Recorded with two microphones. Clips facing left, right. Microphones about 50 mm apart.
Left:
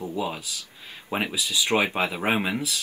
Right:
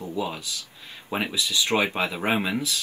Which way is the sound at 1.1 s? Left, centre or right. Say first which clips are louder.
Even; centre.